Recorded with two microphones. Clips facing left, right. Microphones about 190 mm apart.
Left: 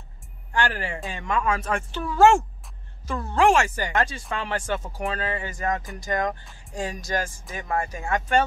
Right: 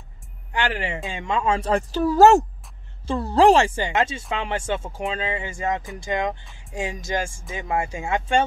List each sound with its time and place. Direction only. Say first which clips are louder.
0.5 s a woman's voice: right 1 dB; 20° right (ahead or behind)
7.6 s speech: right 2 dB; 10° right (ahead or behind)
7.9 s a woman's voice: even; 25° right (ahead or behind)